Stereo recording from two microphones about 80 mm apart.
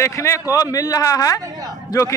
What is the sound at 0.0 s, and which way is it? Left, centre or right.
Speech, left.